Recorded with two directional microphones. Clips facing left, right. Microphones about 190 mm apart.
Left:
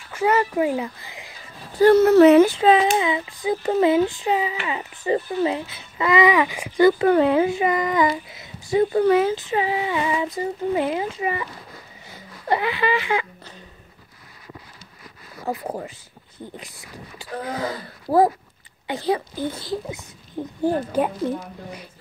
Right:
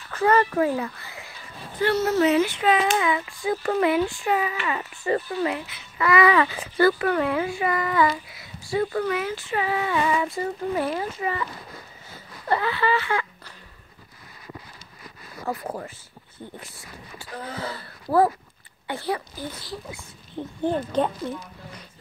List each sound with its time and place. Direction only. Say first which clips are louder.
0.1 s speech: even; 15° left (ahead or behind)
1.8 s speech: left 9 dB; 50° left (ahead or behind)
2.4 s speech: left 5 dB; 30° left (ahead or behind)
12.4 s speech: left 2 dB; 15° left (ahead or behind)
15.6 s speech: left 3 dB; 15° left (ahead or behind)
17.2 s speech: left 6 dB; 15° left (ahead or behind)
20.3 s speech: left 3 dB; 10° left (ahead or behind)